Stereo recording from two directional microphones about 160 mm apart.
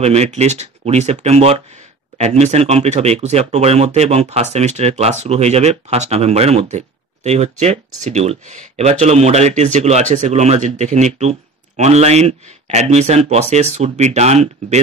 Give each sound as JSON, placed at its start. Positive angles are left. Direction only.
{"t": 0.0, "sound": "speech", "side_deg": -45}